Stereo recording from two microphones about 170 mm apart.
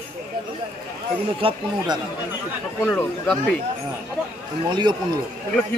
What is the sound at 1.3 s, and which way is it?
Speech, 30° right (ahead or behind).